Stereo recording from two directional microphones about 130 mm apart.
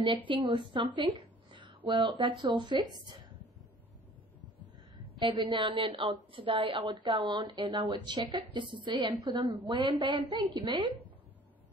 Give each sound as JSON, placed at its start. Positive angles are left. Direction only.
{"t": 0.3, "sound": "a woman's voice", "side_deg": -40}
{"t": 0.7, "sound": "a sound", "side_deg": -40}
{"t": 1.9, "sound": "a woman's voice", "side_deg": -35}
{"t": 5.3, "sound": "a woman's voice", "side_deg": -40}